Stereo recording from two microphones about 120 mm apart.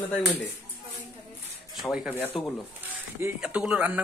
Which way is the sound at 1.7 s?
5° right (ahead or behind).